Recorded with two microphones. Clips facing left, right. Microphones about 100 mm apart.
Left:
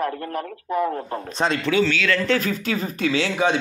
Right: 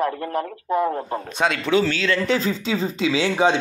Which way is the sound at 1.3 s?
5° right (ahead or behind).